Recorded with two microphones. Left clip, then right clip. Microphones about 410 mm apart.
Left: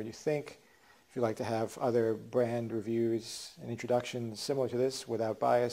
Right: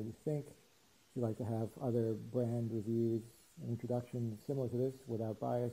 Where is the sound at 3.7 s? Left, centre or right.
Centre.